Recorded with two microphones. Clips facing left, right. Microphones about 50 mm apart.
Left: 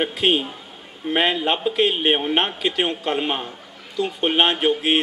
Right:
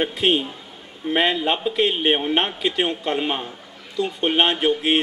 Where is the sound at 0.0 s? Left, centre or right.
Centre.